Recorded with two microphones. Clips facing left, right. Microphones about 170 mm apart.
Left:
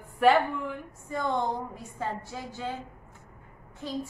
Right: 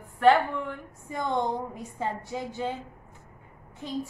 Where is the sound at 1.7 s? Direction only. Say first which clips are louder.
Right 2 dB; 15° right (ahead or behind).